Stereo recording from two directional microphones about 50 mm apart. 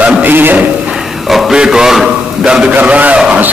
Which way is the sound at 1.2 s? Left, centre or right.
Centre.